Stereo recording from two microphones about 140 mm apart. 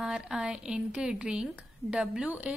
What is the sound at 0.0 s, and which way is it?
A woman's voice, 5° right (ahead or behind).